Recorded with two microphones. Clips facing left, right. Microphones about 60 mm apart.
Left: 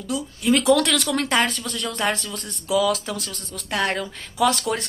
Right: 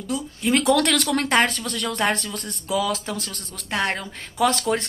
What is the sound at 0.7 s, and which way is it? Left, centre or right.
Speech, right.